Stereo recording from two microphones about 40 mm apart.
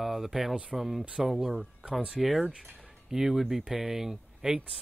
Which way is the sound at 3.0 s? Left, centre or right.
Centre.